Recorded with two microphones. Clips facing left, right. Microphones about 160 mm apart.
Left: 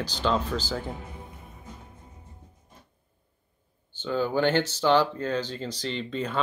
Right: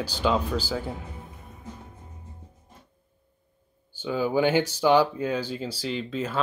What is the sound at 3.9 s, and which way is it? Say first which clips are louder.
Speech: right 1 dB; 10° right (ahead or behind).